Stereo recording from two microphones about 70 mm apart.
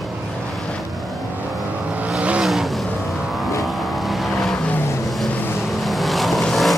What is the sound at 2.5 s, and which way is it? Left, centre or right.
Vehicle, centre.